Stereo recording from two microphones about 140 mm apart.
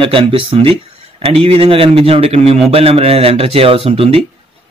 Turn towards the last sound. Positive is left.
turn(degrees=-45)  # may be behind; listen again after turning